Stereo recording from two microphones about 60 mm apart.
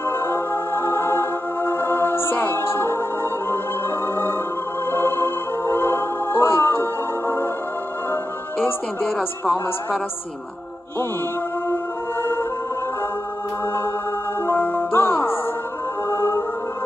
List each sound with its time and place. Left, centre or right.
0.0 s music: left
4.0 s music: left
9.0 s speech: centre
11.7 s music: left
14.4 s music: left
16.1 s music: left